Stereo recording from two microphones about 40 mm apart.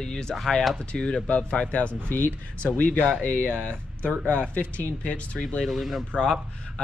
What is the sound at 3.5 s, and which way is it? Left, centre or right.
Speech, left.